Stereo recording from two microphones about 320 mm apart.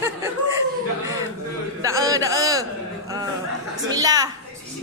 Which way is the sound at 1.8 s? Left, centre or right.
Centre.